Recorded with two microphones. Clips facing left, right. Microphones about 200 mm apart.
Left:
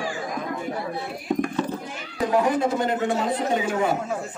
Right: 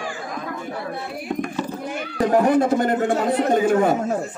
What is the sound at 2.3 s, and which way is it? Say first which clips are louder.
A man's voice: right 4 dB; 55° right (ahead or behind).